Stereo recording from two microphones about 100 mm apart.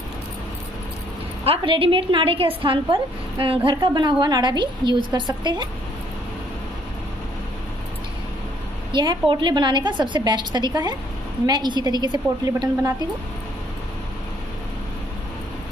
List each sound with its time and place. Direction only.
1.6 s a woman's voice: 60° right (ahead or behind)
3.7 s a woman's voice: 50° right (ahead or behind)
8.9 s a woman's voice: 45° right (ahead or behind)